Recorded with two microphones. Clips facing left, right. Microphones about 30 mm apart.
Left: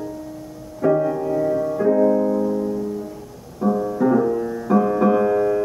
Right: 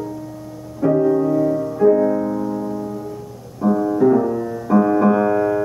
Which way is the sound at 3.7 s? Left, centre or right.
Right.